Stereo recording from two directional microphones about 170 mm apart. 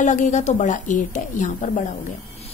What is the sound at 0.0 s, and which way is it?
A woman's voice, 45° left (ahead or behind).